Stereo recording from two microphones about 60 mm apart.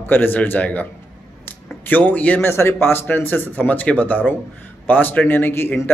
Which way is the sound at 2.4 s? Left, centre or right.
Left.